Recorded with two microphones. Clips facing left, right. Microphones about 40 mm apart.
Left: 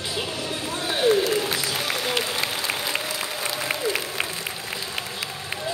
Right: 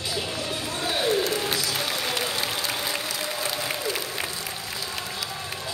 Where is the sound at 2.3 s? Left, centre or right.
Left.